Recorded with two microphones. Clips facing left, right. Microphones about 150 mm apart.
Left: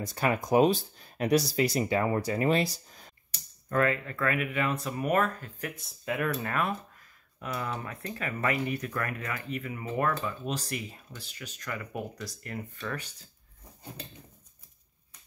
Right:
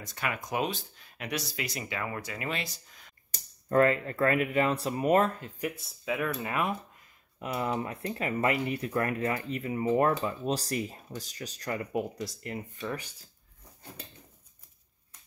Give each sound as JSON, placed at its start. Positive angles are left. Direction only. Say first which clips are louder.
{"t": 0.0, "sound": "speech", "louder": "left 6 dB", "side_deg": 35}
{"t": 3.6, "sound": "speech", "louder": "right 3 dB", "side_deg": -30}
{"t": 5.6, "sound": "speech", "louder": "right 4 dB", "side_deg": 0}
{"t": 7.3, "sound": "speech", "louder": "right 4 dB", "side_deg": -25}
{"t": 12.8, "sound": "speech", "louder": "right 2 dB", "side_deg": -15}